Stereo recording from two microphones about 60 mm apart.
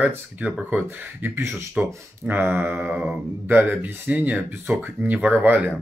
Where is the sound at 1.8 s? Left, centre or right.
Right.